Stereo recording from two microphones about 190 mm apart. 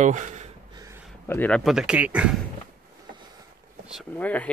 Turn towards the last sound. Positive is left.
turn(degrees=10)  # may be behind; listen again after turning